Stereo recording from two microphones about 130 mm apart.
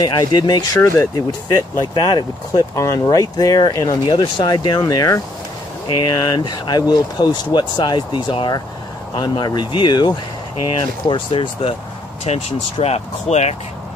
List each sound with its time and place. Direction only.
0.0 s speech: 35° left (ahead or behind)
0.7 s speech: 20° left (ahead or behind)
6.2 s speech: 35° left (ahead or behind)
12.3 s speech: 55° left (ahead or behind)